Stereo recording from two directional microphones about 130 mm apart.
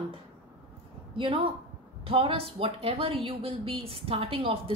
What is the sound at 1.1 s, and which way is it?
A woman's voice, 45° right (ahead or behind).